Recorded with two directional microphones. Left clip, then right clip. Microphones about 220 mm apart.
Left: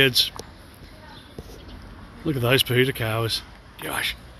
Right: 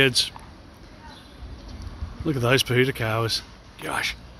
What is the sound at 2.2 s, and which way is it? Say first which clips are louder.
Speech: left 1 dB; centre (ahead or behind).